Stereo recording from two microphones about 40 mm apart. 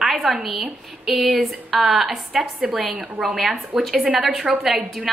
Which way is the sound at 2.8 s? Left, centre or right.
Centre.